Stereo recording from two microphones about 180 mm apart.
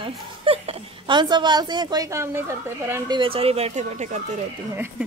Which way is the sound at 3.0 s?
30° right (ahead or behind).